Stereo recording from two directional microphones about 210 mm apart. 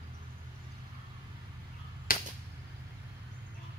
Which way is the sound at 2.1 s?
40° left (ahead or behind).